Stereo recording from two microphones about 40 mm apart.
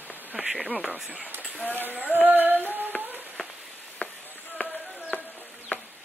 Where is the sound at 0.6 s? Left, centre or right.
Centre.